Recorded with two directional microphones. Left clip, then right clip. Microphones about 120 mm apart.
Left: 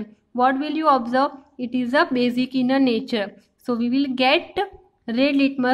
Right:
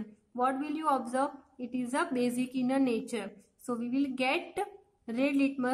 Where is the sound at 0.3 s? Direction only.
15° left (ahead or behind).